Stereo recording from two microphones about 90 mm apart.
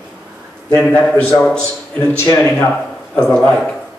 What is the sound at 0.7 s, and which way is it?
Speech, 10° left (ahead or behind).